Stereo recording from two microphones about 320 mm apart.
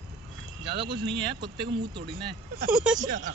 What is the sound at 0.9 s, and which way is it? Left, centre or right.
Speech, right.